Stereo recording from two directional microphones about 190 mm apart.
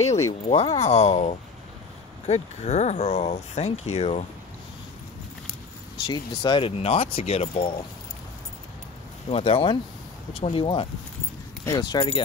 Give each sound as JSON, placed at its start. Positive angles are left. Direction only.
{"t": 0.5, "sound": "speech", "side_deg": 35}
{"t": 6.0, "sound": "speech", "side_deg": 20}
{"t": 9.3, "sound": "speech", "side_deg": 30}